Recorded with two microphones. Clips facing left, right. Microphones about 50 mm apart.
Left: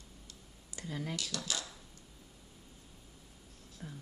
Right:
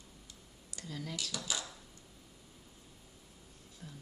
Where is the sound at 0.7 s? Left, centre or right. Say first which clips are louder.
Left 3 dB; left.